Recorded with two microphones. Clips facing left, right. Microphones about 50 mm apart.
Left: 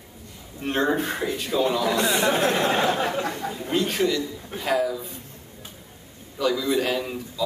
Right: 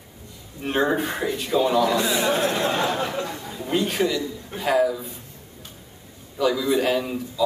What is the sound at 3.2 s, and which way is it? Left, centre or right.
Speech, left.